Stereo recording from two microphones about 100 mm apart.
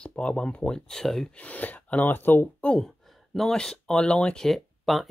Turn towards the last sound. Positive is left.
turn(degrees=0)  # may be behind; listen again after turning